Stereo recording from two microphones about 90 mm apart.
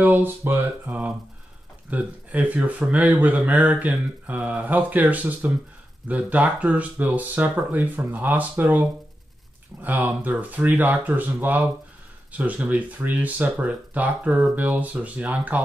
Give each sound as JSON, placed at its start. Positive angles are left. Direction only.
{"t": 0.0, "sound": "speech", "side_deg": -20}